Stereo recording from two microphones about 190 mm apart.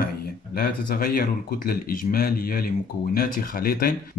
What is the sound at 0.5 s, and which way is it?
Speech, 50° left (ahead or behind).